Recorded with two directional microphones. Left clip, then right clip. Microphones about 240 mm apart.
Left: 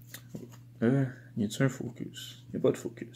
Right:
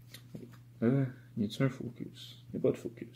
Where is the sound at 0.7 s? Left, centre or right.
Centre.